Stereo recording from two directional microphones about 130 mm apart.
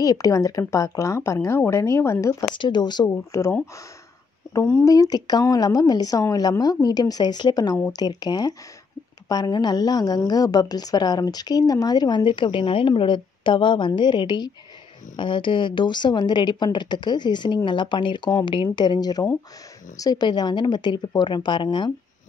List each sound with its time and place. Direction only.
0.0 s a woman's voice: 25° left (ahead or behind)
2.5 s a woman's voice: 35° left (ahead or behind)
4.6 s a woman's voice: 20° left (ahead or behind); by 21.9 s 35° left (ahead or behind)